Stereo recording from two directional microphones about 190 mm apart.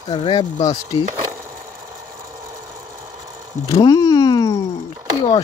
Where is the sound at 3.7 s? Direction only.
20° left (ahead or behind).